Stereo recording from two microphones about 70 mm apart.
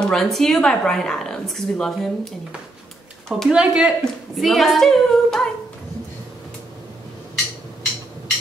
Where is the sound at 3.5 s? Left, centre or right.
Centre.